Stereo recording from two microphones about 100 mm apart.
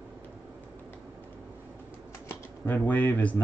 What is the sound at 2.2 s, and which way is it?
Speech, 15° left (ahead or behind).